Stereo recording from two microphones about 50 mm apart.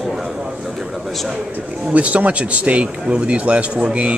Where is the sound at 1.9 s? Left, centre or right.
Right.